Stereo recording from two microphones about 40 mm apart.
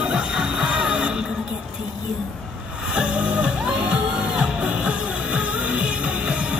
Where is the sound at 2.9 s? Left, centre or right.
Right.